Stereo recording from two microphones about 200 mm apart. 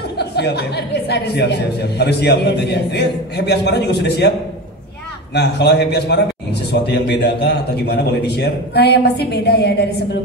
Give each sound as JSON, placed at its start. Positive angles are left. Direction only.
{"t": 0.2, "sound": "speech", "side_deg": 55}
{"t": 5.3, "sound": "speech", "side_deg": 55}